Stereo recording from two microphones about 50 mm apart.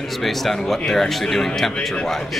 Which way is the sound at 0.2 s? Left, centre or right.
Centre.